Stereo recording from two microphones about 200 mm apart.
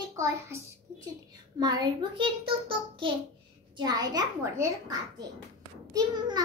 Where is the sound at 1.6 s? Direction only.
20° right (ahead or behind).